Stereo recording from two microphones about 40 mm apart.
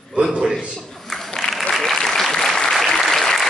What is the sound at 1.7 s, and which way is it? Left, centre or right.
Applause, centre.